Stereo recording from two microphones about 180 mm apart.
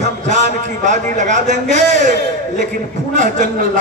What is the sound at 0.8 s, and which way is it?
A man's voice, 45° right (ahead or behind).